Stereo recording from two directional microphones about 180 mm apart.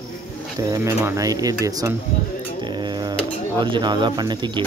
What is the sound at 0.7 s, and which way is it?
Speech, 15° right (ahead or behind).